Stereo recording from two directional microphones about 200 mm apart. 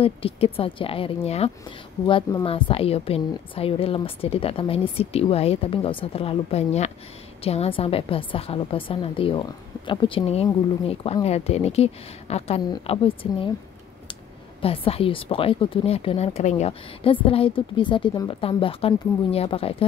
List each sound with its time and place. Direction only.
0.0 s a woman's voice: 30° left (ahead or behind)
14.6 s speech: 30° left (ahead or behind)